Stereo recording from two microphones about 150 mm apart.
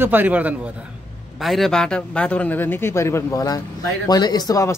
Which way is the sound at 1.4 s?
Centre (ahead or behind).